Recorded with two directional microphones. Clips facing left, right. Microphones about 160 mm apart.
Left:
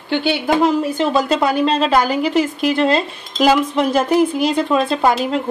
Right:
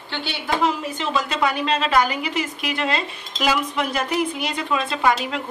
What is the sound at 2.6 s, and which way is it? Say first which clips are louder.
Speech: left 8 dB; 35° left (ahead or behind).